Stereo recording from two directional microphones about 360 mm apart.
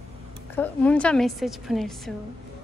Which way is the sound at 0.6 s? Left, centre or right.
Centre.